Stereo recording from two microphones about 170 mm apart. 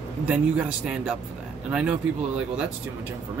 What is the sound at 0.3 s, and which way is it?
A man's voice, 10° right (ahead or behind).